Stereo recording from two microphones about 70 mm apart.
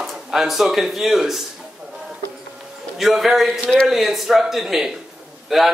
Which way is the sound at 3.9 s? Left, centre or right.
Centre.